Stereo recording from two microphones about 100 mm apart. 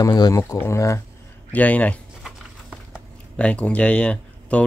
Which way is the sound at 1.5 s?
15° left (ahead or behind).